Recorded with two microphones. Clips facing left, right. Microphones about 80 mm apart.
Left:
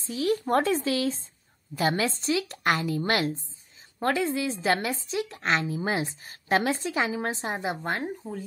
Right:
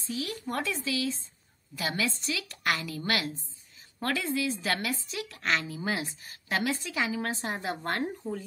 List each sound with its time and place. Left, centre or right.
0.0 s a woman's voice: left; by 8.4 s centre